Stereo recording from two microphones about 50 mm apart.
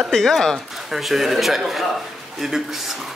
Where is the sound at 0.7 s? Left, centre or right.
Centre.